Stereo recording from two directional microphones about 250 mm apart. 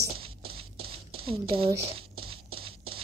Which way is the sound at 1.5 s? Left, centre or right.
Right.